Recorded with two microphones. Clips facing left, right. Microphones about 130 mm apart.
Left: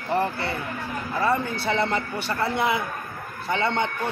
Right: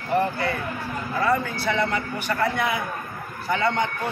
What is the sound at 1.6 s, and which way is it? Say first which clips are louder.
A man's voice: even; 30° left (ahead or behind).